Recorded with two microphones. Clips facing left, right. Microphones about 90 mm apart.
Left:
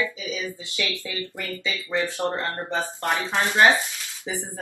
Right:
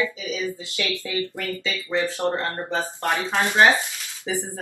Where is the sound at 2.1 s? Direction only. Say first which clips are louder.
Right 2 dB; 20° right (ahead or behind).